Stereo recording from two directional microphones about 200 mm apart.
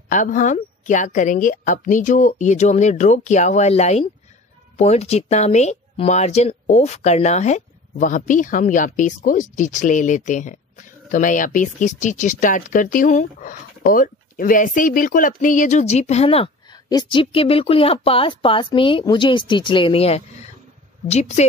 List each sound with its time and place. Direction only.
0.1 s speech: 40° left (ahead or behind)